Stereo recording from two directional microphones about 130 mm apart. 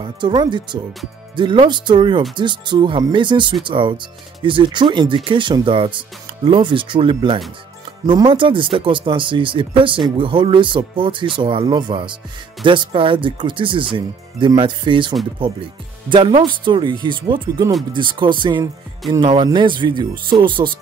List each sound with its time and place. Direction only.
0.0 s speech: 35° right (ahead or behind)